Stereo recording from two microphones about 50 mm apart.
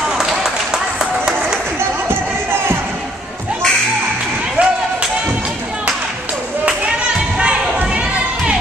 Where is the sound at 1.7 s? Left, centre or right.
Right.